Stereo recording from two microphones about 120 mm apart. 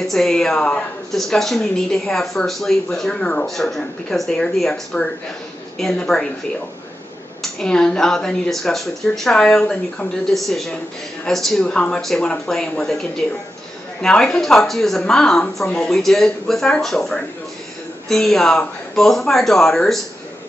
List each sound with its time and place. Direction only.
0.0 s speech: 5° left (ahead or behind)
7.5 s speech: 5° left (ahead or behind)